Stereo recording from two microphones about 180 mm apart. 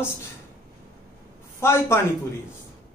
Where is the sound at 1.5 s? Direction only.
15° left (ahead or behind).